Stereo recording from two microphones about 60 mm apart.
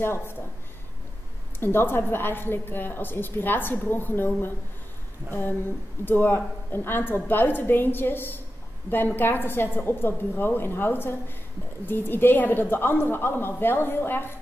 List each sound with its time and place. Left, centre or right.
0.0 s a woman's voice: left
1.6 s a woman's voice: left
6.0 s a woman's voice: left